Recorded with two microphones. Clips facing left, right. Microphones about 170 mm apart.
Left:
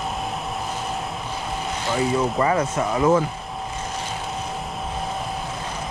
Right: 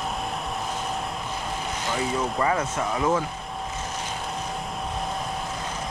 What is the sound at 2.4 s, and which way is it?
Speech, 15° left (ahead or behind).